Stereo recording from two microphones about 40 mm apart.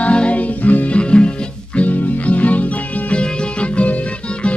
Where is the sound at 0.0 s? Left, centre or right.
Left.